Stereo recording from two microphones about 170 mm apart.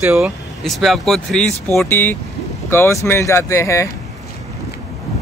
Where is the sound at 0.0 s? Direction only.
5° right (ahead or behind); by 3.9 s 15° left (ahead or behind).